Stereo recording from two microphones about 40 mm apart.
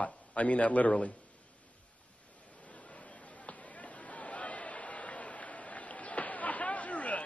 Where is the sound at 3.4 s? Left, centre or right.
Left.